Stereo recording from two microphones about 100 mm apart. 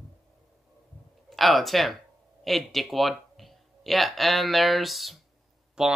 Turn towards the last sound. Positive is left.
turn(degrees=-5)  # may be behind; listen again after turning